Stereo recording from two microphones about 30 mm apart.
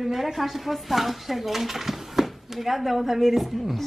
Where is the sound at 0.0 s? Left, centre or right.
Centre.